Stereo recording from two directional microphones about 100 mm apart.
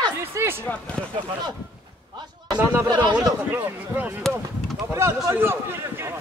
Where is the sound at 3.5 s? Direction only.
20° right (ahead or behind).